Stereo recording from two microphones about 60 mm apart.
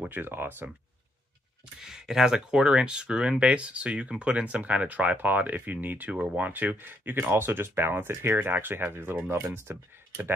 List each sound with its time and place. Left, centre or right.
0.1 s speech: right
1.8 s speech: centre; by 9.4 s right
9.4 s speech: right